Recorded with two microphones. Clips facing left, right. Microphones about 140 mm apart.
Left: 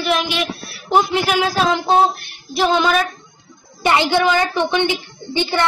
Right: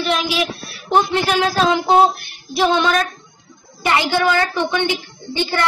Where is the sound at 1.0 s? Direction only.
10° left (ahead or behind).